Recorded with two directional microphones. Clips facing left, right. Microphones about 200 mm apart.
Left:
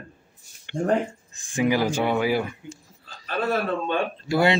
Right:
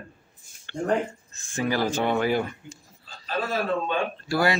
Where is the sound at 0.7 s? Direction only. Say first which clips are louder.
Left 2 dB; 15° left (ahead or behind).